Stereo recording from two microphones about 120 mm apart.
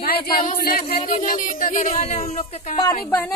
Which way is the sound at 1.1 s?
90° left.